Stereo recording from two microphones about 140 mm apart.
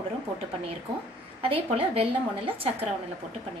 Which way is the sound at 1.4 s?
40° right (ahead or behind).